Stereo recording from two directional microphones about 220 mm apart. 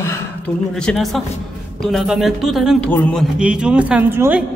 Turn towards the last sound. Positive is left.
turn(degrees=-10)  # may be behind; listen again after turning